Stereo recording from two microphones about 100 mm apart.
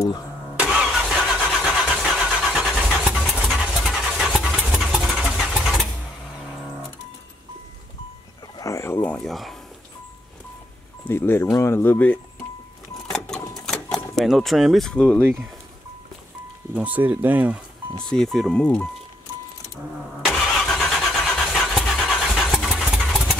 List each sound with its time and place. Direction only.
0.7 s vehicle: 5° right (ahead or behind)
3.4 s dog: centre (ahead or behind)
8.5 s a sound: 30° left (ahead or behind)
9.0 s a sound: 5° left (ahead or behind)
11.1 s speech: 25° left (ahead or behind)
13.1 s a sound: 5° left (ahead or behind)
14.9 s speech: 10° left (ahead or behind)
16.7 s speech: 15° right (ahead or behind)
17.9 s speech: 5° left (ahead or behind)
20.3 s vehicle: 5° left (ahead or behind)